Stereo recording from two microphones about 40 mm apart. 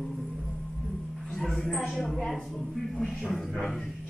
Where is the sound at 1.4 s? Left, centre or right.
Centre.